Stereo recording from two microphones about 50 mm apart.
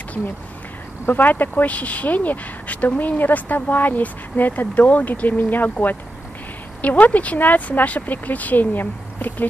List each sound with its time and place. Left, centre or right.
1.1 s speech: left